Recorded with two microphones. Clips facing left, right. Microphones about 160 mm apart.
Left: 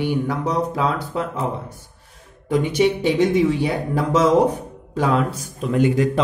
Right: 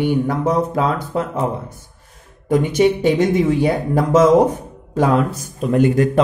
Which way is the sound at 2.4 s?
50° right (ahead or behind).